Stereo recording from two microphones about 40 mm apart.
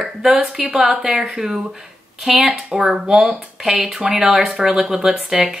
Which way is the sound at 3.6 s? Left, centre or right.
Centre.